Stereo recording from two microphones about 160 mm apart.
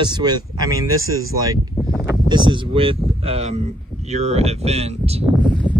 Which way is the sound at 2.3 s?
30° right (ahead or behind).